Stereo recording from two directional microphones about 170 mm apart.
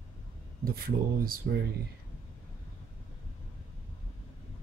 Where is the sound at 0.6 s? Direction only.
60° right (ahead or behind).